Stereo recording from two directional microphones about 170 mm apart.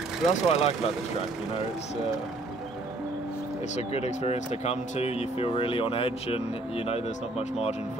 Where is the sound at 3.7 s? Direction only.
40° left (ahead or behind).